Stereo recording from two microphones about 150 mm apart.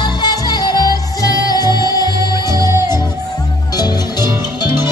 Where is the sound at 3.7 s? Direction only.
25° left (ahead or behind).